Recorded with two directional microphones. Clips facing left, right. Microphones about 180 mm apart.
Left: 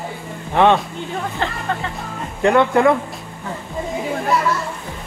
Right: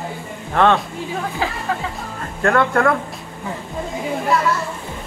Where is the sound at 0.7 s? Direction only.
Centre (ahead or behind).